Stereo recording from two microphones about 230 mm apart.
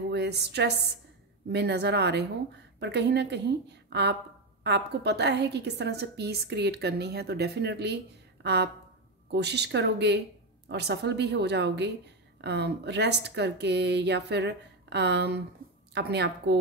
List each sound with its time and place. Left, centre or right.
0.1 s a woman's voice: right